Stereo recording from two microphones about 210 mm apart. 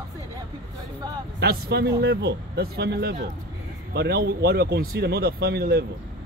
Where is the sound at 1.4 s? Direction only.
50° right (ahead or behind).